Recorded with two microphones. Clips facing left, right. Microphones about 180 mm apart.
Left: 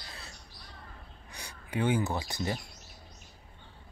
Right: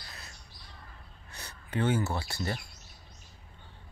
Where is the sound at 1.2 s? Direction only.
10° left (ahead or behind).